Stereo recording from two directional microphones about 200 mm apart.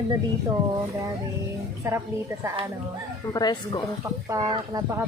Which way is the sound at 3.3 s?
20° left (ahead or behind).